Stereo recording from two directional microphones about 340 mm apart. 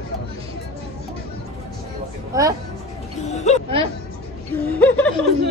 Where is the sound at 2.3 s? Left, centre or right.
Centre.